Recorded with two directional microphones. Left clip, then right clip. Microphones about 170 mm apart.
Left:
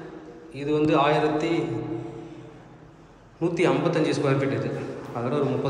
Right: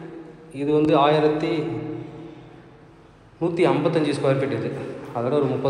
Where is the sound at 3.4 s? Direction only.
10° left (ahead or behind).